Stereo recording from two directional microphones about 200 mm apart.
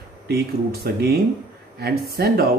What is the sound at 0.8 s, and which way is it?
Speech, 55° right (ahead or behind).